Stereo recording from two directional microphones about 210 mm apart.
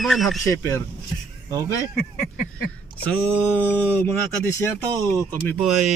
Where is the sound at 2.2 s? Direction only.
45° left (ahead or behind).